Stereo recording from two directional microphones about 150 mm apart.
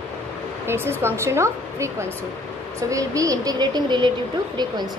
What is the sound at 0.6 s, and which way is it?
A woman's voice, 15° right (ahead or behind).